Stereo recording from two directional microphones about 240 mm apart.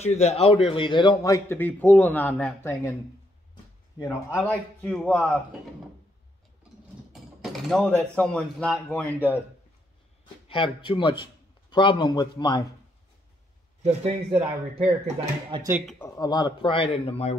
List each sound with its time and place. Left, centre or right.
0.0 s a man's voice: left; by 2.9 s centre
4.4 s a man's voice: centre
7.6 s a man's voice: centre
10.5 s a man's voice: left
13.8 s speech: right
15.8 s a man's voice: centre
16.2 s speech: centre